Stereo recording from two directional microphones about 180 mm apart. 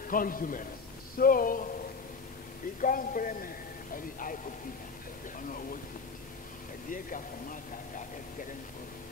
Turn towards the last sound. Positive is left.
turn(degrees=50)  # may be behind; listen again after turning